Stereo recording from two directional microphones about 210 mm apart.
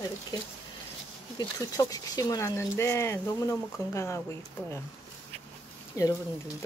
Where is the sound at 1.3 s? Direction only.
15° left (ahead or behind).